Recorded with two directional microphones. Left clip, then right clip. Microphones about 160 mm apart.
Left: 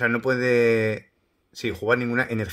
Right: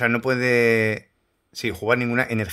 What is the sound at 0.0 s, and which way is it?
Speech, 25° right (ahead or behind).